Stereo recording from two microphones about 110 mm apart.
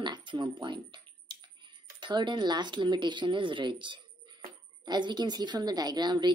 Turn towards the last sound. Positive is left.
turn(degrees=-40)  # may be behind; listen again after turning